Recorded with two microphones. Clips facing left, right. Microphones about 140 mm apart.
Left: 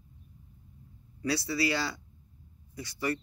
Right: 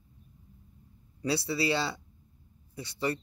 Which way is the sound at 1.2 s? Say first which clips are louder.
Even; 25° right (ahead or behind).